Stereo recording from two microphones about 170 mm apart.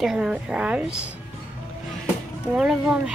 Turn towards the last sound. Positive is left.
turn(degrees=-5)  # may be behind; listen again after turning